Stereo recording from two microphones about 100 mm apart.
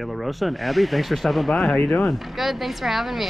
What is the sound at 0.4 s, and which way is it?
Speech, centre (ahead or behind).